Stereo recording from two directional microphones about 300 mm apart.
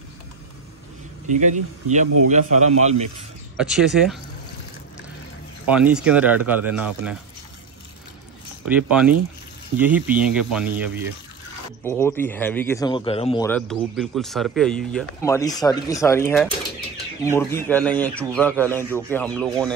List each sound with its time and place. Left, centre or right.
1.4 s a man's voice: right
3.5 s speech: centre
5.7 s speech: centre
8.6 s speech: centre
11.8 s a man's voice: centre
13.5 s a man's voice: centre